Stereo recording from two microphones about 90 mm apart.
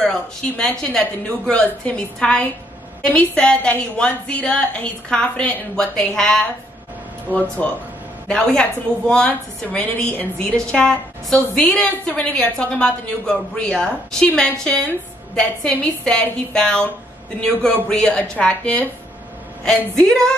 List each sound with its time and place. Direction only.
0.0 s a woman's voice: 10° left (ahead or behind)
7.3 s a woman's voice: 20° left (ahead or behind)
20.0 s a woman's voice: 5° left (ahead or behind)